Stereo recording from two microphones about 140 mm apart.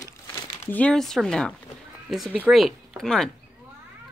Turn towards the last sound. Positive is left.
turn(degrees=5)  # may be behind; listen again after turning